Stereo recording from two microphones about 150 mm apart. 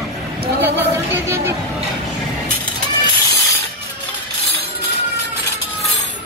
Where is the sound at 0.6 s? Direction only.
15° right (ahead or behind).